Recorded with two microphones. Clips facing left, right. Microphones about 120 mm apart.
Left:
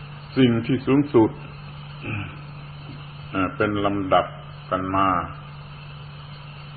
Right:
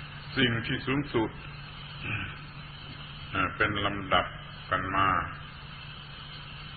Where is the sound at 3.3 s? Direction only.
35° left (ahead or behind).